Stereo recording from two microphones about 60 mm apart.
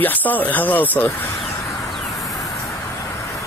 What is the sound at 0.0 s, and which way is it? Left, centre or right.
Speech, left.